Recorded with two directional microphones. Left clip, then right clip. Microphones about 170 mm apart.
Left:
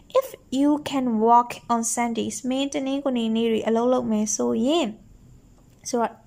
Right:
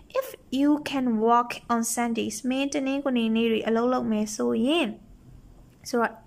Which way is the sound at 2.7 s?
25° left (ahead or behind).